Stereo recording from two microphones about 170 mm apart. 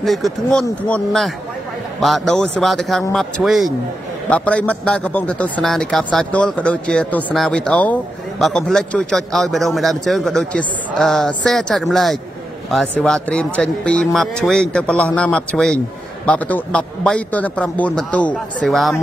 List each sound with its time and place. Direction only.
0.0 s a man's voice: centre (ahead or behind)